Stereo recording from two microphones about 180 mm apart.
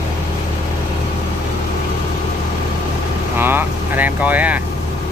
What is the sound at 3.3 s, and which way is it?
Speech, 10° right (ahead or behind).